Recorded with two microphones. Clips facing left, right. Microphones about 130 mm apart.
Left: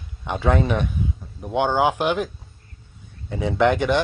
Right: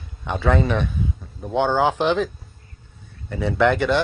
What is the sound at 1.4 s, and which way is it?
Speech, 15° left (ahead or behind).